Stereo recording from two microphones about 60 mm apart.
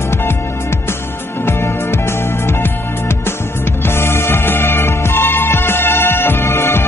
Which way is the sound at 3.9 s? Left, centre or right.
Left.